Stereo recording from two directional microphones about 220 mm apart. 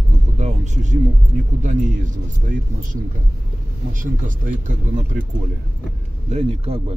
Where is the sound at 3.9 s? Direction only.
35° right (ahead or behind).